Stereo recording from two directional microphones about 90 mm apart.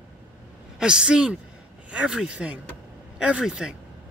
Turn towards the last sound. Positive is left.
turn(degrees=-5)  # may be behind; listen again after turning